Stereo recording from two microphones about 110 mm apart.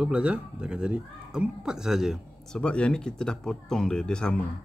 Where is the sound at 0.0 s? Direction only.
10° right (ahead or behind).